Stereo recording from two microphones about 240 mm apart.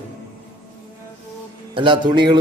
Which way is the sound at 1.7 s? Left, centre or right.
Centre.